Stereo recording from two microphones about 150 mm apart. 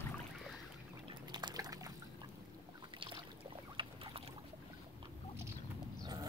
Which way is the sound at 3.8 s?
35° right (ahead or behind).